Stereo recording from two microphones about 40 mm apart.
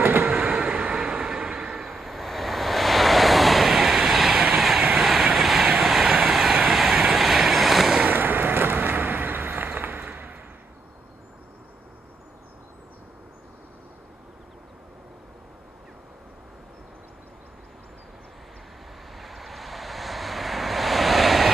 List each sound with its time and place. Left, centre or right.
0.2 s vehicle: centre
4.6 s train: centre
5.3 s vehicle: centre
5.9 s train: centre
6.7 s vehicle: centre
8.1 s vehicle: right
19.1 s vehicle: centre